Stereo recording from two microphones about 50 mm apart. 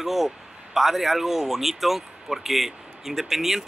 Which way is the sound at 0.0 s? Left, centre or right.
Centre.